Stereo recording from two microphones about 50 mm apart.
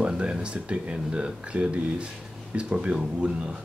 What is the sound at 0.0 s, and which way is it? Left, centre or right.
Speech, right.